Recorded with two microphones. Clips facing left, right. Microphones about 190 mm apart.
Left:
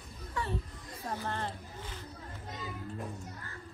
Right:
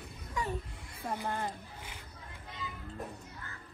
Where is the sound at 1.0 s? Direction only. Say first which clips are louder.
Right 1 dB; 15° right (ahead or behind).